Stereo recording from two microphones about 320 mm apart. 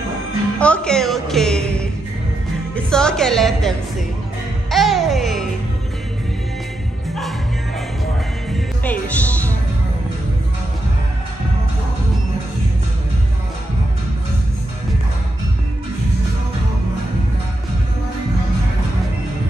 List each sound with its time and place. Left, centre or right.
0.6 s music: centre
2.7 s speech: centre
4.6 s music: centre
8.5 s music: centre